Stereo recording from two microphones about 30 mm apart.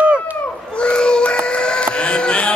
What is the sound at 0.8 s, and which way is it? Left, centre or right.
Child singing, left.